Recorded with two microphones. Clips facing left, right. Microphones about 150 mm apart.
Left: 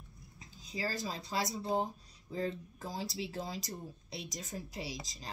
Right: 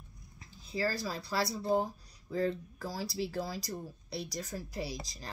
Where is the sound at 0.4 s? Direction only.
15° left (ahead or behind).